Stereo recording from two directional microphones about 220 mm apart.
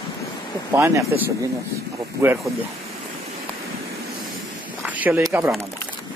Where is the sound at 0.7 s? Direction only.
10° right (ahead or behind).